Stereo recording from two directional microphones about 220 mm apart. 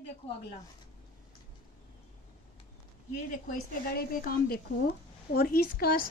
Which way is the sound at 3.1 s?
40° left (ahead or behind).